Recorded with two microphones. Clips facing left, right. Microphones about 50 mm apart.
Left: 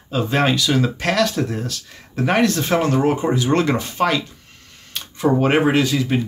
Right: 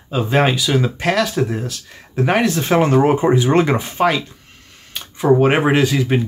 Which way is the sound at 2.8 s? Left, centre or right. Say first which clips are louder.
Right 7 dB; right.